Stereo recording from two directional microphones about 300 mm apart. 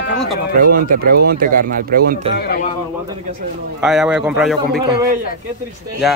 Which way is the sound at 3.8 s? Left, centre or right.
Centre.